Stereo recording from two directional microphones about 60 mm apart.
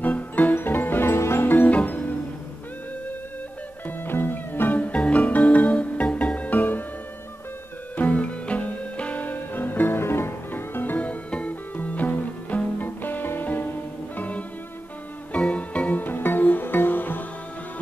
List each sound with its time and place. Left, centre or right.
0.0 s music: left
3.8 s music: left
7.9 s music: left
16.0 s music: left